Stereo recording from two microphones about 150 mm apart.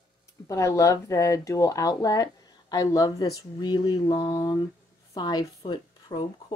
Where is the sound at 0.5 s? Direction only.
20° left (ahead or behind).